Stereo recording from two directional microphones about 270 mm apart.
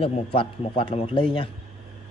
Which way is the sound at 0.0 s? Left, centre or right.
Centre.